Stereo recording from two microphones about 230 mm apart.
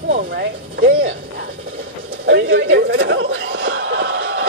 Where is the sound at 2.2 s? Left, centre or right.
Right.